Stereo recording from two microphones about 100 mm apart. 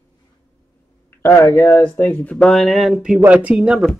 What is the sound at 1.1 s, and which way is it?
Speech, 25° left (ahead or behind).